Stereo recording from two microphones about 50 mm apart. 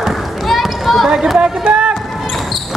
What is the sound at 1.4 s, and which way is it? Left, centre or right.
Run, right.